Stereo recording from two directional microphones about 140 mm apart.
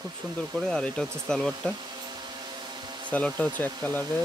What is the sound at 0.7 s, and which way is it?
Speech, 5° left (ahead or behind).